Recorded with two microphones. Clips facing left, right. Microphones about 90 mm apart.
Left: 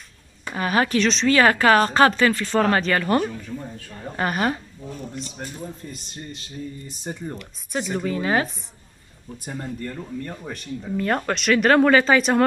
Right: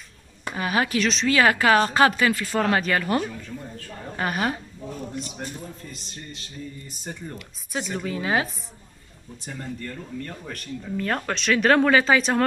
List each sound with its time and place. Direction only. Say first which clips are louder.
0.5 s speech: left 3 dB; 5° right (ahead or behind)
7.3 s speech: left 3 dB; centre (ahead or behind)
9.5 s speech: left 3 dB; 25° left (ahead or behind)
10.5 s speech: left 3 dB; centre (ahead or behind)